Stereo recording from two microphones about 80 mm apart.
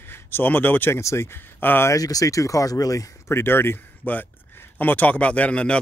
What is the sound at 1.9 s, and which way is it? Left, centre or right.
Speech, left.